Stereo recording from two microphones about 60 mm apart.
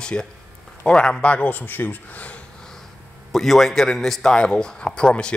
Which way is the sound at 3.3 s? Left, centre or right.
Centre.